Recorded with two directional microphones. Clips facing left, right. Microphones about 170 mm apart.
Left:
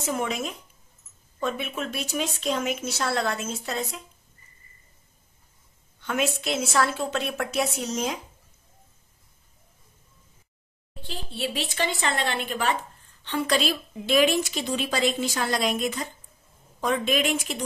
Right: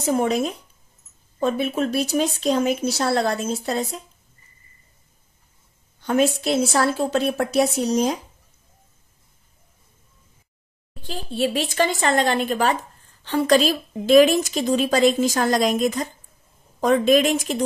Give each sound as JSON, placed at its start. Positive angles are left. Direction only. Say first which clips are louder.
{"t": 0.0, "sound": "speech", "louder": "right 8 dB", "side_deg": -35}
{"t": 5.9, "sound": "speech", "louder": "right 7 dB", "side_deg": -35}
{"t": 11.0, "sound": "a woman's voice", "louder": "right 8 dB", "side_deg": -45}